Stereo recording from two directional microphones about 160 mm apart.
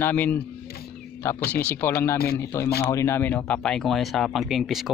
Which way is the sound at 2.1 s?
75° left (ahead or behind).